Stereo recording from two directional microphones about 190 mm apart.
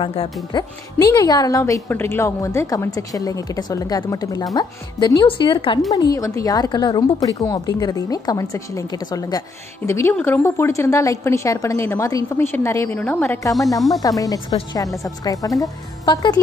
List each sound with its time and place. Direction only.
0.0 s a woman's voice: 30° left (ahead or behind)
13.7 s speech: centre (ahead or behind)
14.0 s a woman's voice: 20° left (ahead or behind)